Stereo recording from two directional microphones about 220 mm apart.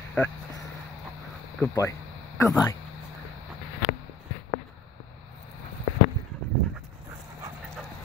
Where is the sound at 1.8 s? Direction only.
15° left (ahead or behind).